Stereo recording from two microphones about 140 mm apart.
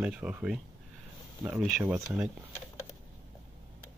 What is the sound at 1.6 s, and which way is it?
Speech, 5° right (ahead or behind).